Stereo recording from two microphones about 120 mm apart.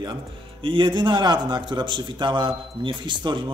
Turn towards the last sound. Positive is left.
turn(degrees=-40)  # may be behind; listen again after turning